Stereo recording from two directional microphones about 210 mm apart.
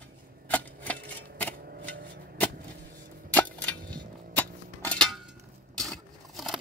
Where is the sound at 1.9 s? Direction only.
55° right (ahead or behind).